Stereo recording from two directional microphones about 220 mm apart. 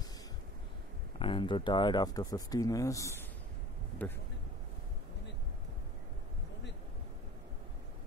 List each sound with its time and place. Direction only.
1.2 s speech: 20° left (ahead or behind); by 4.2 s 5° left (ahead or behind)